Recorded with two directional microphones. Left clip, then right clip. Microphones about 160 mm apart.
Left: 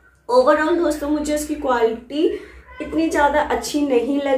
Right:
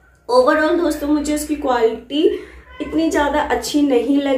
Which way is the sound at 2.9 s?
5° right (ahead or behind).